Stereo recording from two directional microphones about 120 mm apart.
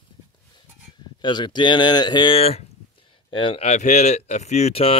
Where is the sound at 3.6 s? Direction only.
75° left (ahead or behind).